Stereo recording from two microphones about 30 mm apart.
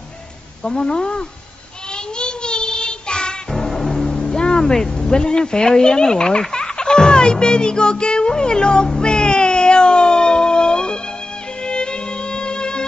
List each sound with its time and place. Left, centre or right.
0.7 s speech: left
2.1 s child singing: left
3.5 s music: centre
4.1 s vehicle: left
4.9 s speech: left
9.0 s a sound: left
11.6 s violin: left